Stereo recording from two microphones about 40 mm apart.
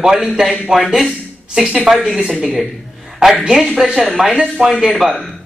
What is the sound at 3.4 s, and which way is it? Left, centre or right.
Speech, centre.